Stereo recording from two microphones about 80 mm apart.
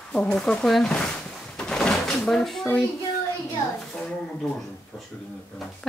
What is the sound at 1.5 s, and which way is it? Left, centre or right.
Door, centre.